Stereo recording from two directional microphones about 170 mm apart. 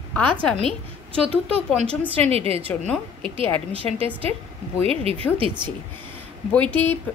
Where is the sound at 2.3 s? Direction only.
35° right (ahead or behind).